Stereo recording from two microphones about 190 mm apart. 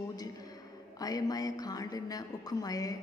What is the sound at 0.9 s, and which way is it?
A man's voice, 20° left (ahead or behind).